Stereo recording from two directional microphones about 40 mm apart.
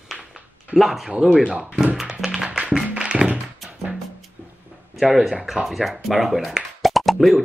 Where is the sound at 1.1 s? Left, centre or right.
Centre.